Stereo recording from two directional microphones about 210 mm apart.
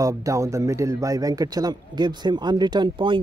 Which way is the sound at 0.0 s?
15° right (ahead or behind).